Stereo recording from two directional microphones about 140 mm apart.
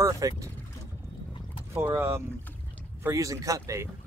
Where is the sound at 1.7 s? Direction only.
15° right (ahead or behind).